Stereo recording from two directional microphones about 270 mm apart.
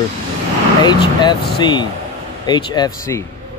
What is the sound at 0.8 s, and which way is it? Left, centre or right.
Speech, centre.